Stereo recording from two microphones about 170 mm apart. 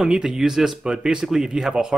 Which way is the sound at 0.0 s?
5° right (ahead or behind).